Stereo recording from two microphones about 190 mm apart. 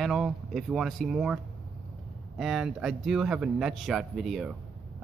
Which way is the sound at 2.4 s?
Centre (ahead or behind).